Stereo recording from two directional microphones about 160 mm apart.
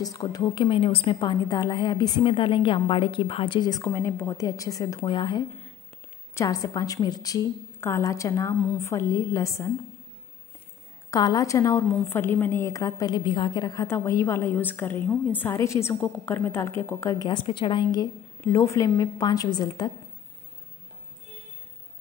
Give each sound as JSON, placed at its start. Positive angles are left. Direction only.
{"t": 0.0, "sound": "a woman's voice", "side_deg": 25}
{"t": 11.1, "sound": "a woman's voice", "side_deg": 20}
{"t": 18.4, "sound": "a woman's voice", "side_deg": 20}